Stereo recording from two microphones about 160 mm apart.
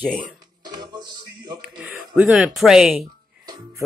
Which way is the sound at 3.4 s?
25° right (ahead or behind).